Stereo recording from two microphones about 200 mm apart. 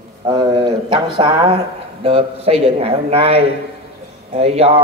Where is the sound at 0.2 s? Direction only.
20° right (ahead or behind).